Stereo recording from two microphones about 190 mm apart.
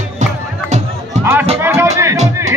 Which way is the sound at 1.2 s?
15° right (ahead or behind).